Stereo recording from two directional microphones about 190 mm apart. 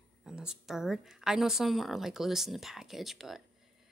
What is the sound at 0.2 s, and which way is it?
A woman's voice, 5° right (ahead or behind).